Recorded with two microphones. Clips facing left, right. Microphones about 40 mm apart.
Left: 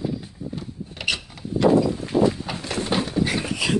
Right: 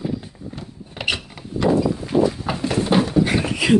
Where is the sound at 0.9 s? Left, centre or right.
Centre.